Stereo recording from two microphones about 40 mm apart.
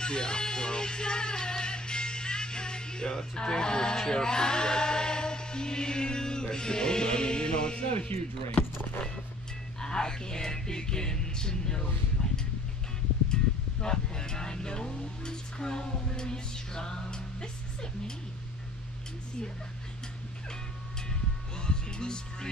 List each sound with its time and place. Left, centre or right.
0.0 s music: left
9.8 s music: centre
12.2 s a sound: left
13.3 s speech: centre
21.1 s music: centre